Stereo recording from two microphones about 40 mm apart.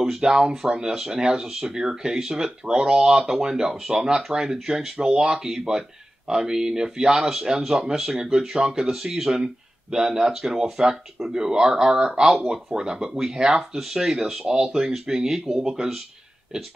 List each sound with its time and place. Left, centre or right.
0.0 s speech: centre
13.6 s speech: centre